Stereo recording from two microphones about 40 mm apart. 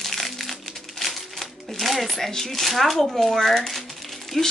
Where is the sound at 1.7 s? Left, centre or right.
Centre.